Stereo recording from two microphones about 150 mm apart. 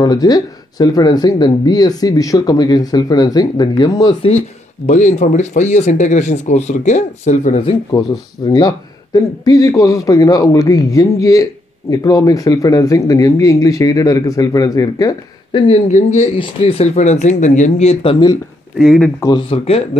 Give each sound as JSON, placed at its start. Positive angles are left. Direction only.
{"t": 0.0, "sound": "speech", "side_deg": 25}
{"t": 4.8, "sound": "speech", "side_deg": 55}
{"t": 8.5, "sound": "speech", "side_deg": 25}
{"t": 15.9, "sound": "speech", "side_deg": 55}
{"t": 16.3, "sound": "speech", "side_deg": 40}
{"t": 18.8, "sound": "speech", "side_deg": 0}
{"t": 19.5, "sound": "speech", "side_deg": 40}